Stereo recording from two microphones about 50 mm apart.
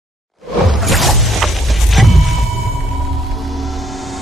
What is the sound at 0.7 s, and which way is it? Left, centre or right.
Music, centre.